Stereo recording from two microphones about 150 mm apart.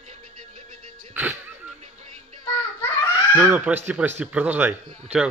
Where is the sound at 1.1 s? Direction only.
10° right (ahead or behind).